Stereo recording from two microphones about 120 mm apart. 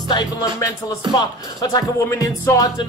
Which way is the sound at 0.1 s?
35° left (ahead or behind).